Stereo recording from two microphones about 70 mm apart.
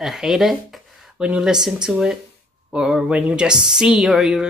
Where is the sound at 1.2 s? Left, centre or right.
Centre.